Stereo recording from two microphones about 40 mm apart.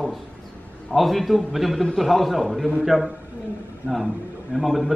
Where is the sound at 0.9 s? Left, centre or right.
Centre.